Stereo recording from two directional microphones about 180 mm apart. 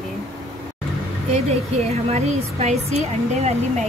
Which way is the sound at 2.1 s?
40° right (ahead or behind).